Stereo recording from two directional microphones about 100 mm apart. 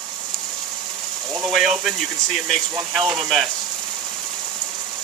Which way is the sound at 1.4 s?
Centre (ahead or behind).